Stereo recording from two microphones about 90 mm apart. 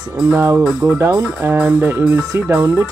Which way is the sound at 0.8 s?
30° right (ahead or behind).